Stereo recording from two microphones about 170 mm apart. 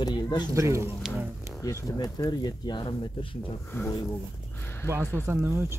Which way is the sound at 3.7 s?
15° left (ahead or behind).